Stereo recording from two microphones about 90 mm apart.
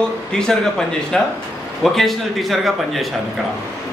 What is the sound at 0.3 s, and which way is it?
A man's voice, 5° left (ahead or behind).